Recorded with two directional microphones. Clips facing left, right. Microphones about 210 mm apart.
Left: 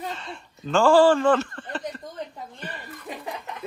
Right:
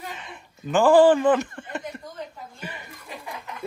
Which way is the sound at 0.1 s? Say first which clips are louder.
Left 3 dB; 15° right (ahead or behind).